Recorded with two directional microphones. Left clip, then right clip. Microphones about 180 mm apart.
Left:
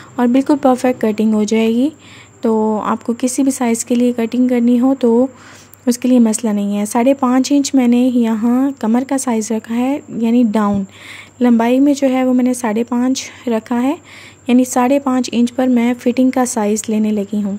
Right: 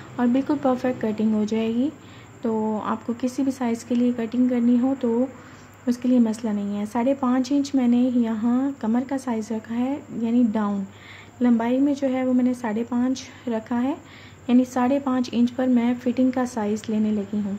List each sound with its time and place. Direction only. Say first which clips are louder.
0.1 s speech: left 9 dB; 50° left (ahead or behind)